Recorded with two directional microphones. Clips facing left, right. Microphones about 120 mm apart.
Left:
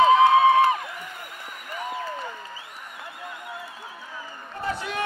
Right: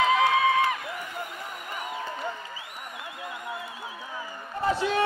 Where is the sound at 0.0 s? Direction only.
25° left (ahead or behind).